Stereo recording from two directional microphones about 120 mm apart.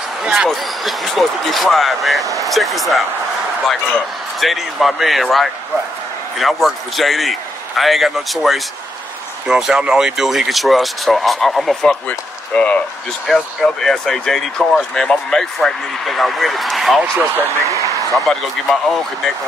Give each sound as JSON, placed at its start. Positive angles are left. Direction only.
{"t": 0.2, "sound": "speech", "side_deg": -5}
{"t": 4.4, "sound": "speech", "side_deg": 0}
{"t": 17.2, "sound": "speech", "side_deg": -20}
{"t": 18.1, "sound": "speech", "side_deg": 5}